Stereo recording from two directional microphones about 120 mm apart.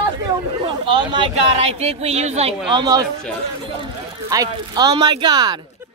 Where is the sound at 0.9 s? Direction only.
40° right (ahead or behind).